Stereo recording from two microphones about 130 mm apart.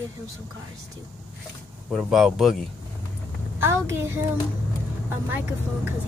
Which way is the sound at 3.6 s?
20° right (ahead or behind).